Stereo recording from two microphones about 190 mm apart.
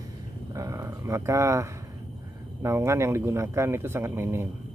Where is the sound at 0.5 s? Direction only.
15° right (ahead or behind).